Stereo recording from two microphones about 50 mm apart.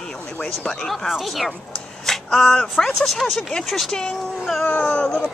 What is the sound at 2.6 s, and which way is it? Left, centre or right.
A woman's voice, centre.